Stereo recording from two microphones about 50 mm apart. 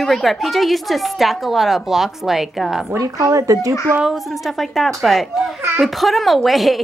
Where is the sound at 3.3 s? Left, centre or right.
Right.